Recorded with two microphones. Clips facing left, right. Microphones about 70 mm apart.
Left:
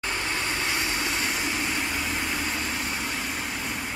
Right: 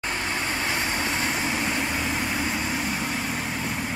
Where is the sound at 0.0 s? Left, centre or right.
Centre.